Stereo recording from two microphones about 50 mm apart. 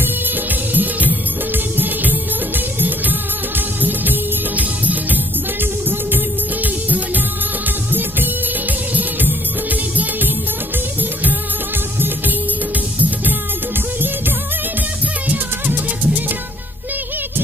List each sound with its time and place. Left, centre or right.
0.7 s music: right
15.2 s music: right